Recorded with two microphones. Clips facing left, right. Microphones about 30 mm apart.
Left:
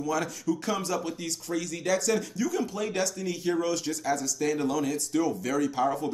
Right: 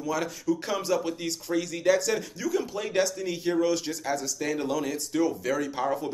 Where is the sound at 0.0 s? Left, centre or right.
Centre.